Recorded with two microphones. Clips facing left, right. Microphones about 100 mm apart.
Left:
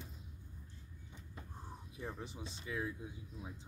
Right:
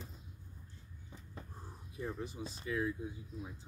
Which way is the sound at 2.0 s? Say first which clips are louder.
Right 5 dB; 20° left (ahead or behind).